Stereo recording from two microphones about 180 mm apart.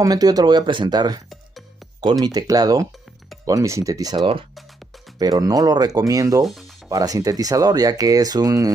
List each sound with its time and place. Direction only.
0.0 s speech: 20° right (ahead or behind)
2.2 s speech: 20° right (ahead or behind)